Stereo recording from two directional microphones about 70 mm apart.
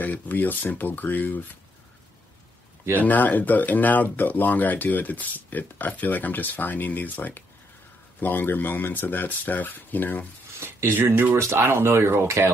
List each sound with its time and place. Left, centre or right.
0.0 s speech: left
3.0 s speech: left
10.6 s speech: right